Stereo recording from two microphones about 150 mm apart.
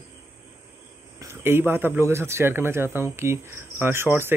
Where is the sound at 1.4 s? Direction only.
15° right (ahead or behind).